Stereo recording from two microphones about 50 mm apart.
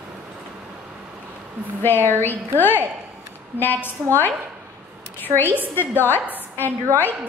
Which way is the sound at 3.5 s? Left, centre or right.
Left.